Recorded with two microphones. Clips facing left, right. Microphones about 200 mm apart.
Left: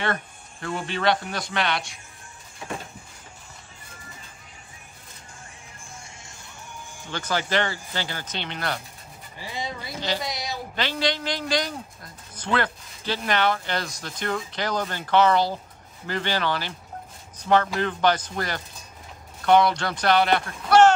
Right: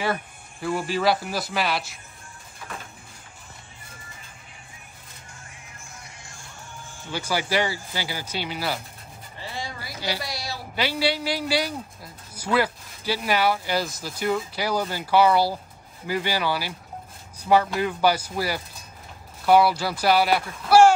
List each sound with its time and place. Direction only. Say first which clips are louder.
0.0 s speech: right 1 dB; 5° right (ahead or behind)
6.0 s music: even; 25° left (ahead or behind)
7.1 s speech: even; 10° right (ahead or behind)
9.4 s music: left 2 dB; 20° left (ahead or behind)
9.9 s speech: left 1 dB; 10° right (ahead or behind)
10.2 s a woman's voice: left 2 dB; 20° left (ahead or behind)
10.8 s speech: right 2 dB; 10° right (ahead or behind)